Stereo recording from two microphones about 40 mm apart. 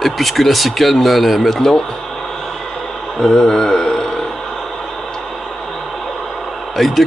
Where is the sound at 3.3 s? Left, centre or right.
Centre.